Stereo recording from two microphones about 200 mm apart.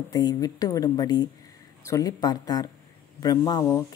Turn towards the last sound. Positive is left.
turn(degrees=20)  # may be behind; listen again after turning